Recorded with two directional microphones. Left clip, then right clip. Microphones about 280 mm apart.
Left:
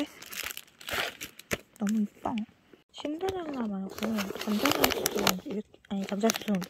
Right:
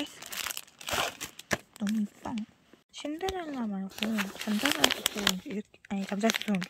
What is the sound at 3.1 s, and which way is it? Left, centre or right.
Speech, centre.